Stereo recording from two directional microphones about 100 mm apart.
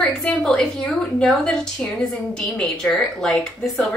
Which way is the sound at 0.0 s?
10° left (ahead or behind).